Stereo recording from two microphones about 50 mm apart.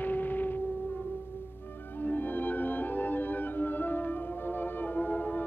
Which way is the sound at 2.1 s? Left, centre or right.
Left.